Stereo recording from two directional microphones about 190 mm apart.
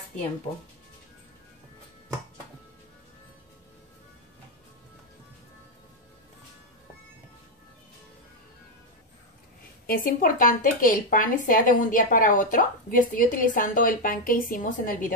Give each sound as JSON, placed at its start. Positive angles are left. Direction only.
{"t": 9.8, "sound": "speech", "side_deg": 50}